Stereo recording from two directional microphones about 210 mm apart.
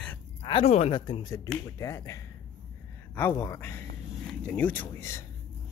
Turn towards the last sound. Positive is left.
turn(degrees=10)  # may be behind; listen again after turning